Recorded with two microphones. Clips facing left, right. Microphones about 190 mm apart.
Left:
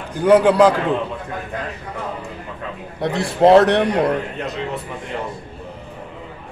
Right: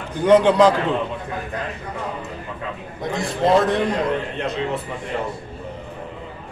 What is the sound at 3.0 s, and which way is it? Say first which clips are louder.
A man's voice: left 6 dB; 70° left (ahead or behind).